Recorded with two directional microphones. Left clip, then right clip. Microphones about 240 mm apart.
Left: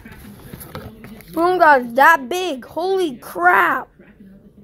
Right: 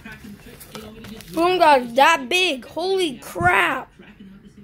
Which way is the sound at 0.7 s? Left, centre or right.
Centre.